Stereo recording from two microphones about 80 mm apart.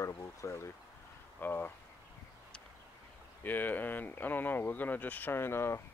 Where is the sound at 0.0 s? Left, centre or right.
Left.